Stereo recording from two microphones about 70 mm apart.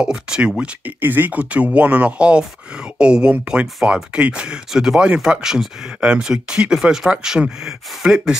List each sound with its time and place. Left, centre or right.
0.0 s speech: centre
1.0 s speech: right; by 8.4 s centre